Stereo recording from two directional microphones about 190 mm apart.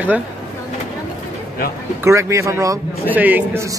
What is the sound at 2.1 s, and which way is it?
Speech, 15° right (ahead or behind).